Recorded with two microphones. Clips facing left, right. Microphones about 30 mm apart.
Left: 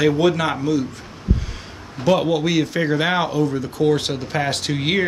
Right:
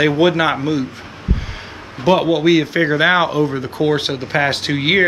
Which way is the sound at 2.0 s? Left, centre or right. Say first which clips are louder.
Right 4 dB; right.